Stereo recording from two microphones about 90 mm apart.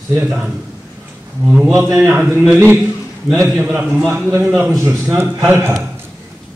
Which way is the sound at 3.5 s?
10° right (ahead or behind).